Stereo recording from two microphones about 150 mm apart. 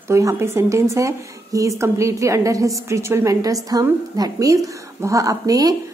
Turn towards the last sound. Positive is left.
turn(degrees=-25)  # may be behind; listen again after turning